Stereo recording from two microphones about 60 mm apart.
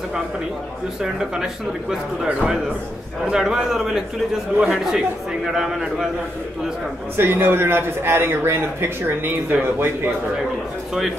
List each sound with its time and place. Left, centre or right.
1.0 s a man's voice: centre
7.2 s a man's voice: right